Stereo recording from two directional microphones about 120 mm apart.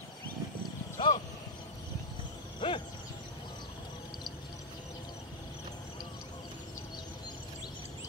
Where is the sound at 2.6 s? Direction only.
45° left (ahead or behind).